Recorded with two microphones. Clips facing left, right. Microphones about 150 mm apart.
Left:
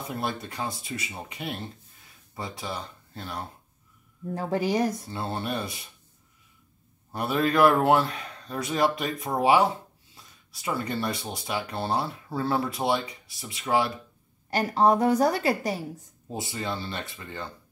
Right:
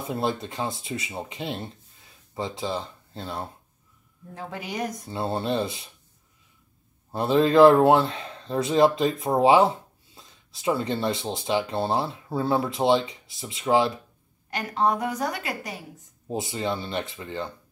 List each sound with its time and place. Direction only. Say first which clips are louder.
0.1 s speech: right 5 dB; 20° right (ahead or behind)
4.3 s a woman's voice: left 9 dB; 35° left (ahead or behind)
5.1 s speech: right 5 dB; 25° right (ahead or behind)
7.1 s speech: right 5 dB; 25° right (ahead or behind)
14.5 s a woman's voice: left 3 dB; 35° left (ahead or behind)
16.3 s speech: right 4 dB; 20° right (ahead or behind)